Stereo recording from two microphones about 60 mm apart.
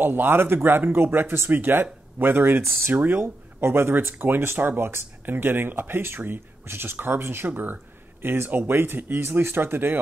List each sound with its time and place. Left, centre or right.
0.0 s speech: right
2.9 s speech: right
3.2 s speech: right